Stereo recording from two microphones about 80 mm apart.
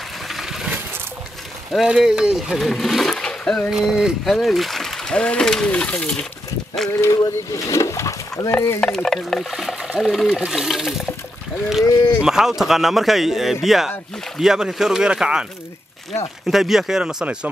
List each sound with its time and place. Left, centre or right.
0.3 s a sound: centre
1.9 s speech: centre
2.5 s speech: centre
3.7 s speech: centre
7.0 s speech: left
8.5 s speech: left
8.8 s speech: centre
12.2 s speech: centre
16.4 s speech: centre